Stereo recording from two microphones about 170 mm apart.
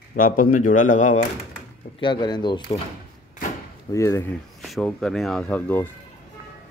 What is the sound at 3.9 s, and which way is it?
Speech, 15° left (ahead or behind).